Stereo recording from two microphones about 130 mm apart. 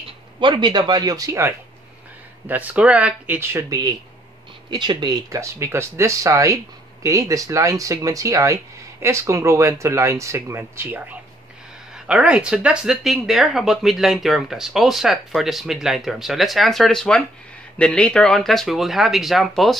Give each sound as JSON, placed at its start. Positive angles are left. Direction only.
{"t": 0.4, "sound": "speech", "side_deg": -35}
{"t": 2.4, "sound": "speech", "side_deg": -10}
{"t": 4.6, "sound": "speech", "side_deg": -35}
{"t": 12.1, "sound": "speech", "side_deg": -5}